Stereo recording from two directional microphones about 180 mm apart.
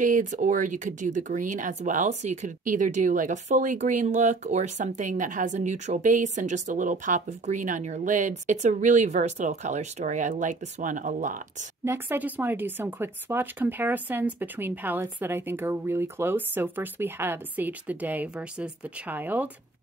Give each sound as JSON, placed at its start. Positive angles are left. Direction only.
{"t": 0.0, "sound": "speech", "side_deg": -45}
{"t": 11.8, "sound": "speech", "side_deg": -10}